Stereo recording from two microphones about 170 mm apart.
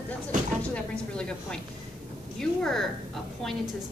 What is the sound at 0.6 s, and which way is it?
A woman's voice, 5° left (ahead or behind).